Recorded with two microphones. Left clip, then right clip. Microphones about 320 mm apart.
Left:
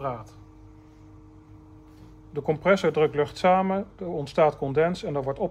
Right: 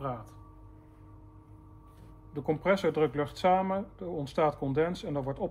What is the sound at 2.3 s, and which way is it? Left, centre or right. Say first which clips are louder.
Speech: left 6 dB; left.